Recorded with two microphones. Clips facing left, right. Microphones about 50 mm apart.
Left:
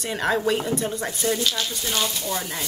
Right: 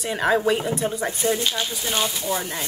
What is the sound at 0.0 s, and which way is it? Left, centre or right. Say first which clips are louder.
Speech: right 2 dB; centre.